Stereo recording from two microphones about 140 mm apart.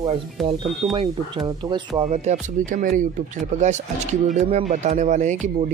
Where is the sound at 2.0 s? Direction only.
60° right (ahead or behind).